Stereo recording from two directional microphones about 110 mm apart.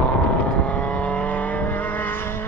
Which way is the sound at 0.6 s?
15° left (ahead or behind).